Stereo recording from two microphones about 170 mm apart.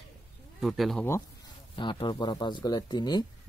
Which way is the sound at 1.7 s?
30° left (ahead or behind).